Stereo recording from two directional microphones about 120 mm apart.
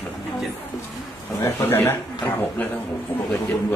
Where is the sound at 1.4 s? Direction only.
20° left (ahead or behind).